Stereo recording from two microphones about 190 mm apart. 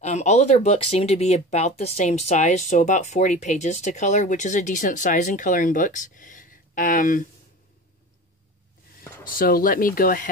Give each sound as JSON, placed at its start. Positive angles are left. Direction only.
{"t": 0.0, "sound": "speech", "side_deg": 35}
{"t": 9.3, "sound": "speech", "side_deg": 45}